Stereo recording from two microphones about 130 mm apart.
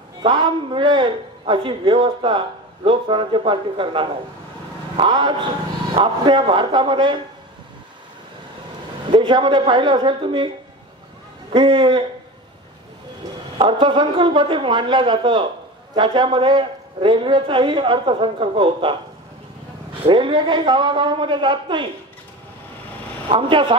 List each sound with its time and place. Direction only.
0.2 s a man's voice: 40° right (ahead or behind)
9.1 s a man's voice: 40° right (ahead or behind)
11.5 s a man's voice: 40° right (ahead or behind)
13.6 s a man's voice: 40° right (ahead or behind)
20.1 s a man's voice: 40° right (ahead or behind)
23.2 s a man's voice: 40° right (ahead or behind)